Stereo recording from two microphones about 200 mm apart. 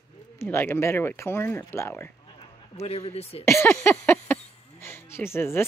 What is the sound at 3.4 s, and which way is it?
Speech, 10° left (ahead or behind).